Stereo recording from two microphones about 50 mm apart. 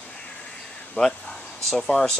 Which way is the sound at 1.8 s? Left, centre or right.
Centre.